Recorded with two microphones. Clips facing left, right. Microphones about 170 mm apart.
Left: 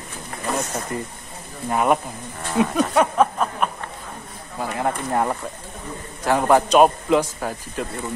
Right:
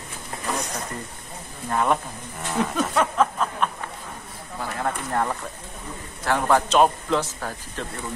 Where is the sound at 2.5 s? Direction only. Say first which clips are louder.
Left 5 dB; centre (ahead or behind).